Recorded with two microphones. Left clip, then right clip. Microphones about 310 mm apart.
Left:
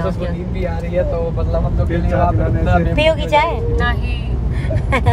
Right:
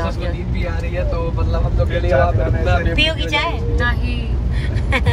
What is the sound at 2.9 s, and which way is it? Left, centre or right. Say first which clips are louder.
Speech: left 7 dB; left.